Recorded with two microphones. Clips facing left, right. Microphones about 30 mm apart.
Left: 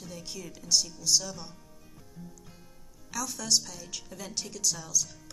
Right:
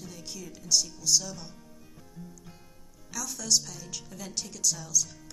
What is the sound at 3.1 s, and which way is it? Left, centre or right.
A woman's voice, centre.